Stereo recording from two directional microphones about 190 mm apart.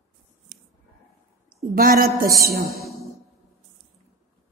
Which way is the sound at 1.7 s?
50° right (ahead or behind).